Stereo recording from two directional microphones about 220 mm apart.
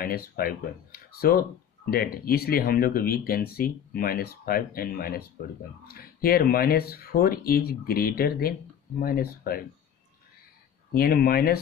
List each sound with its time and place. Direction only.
0.0 s speech: 40° left (ahead or behind)
10.9 s speech: 40° left (ahead or behind)